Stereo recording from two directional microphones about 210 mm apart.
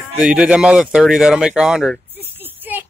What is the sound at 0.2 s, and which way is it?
Speech, 5° right (ahead or behind).